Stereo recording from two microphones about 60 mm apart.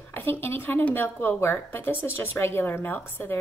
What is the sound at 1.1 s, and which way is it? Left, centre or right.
Speech, left.